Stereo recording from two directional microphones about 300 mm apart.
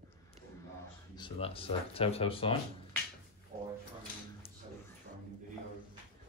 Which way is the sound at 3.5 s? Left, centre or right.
Right.